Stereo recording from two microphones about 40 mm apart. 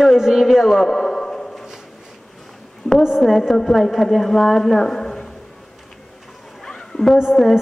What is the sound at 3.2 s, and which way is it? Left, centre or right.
Speech, centre.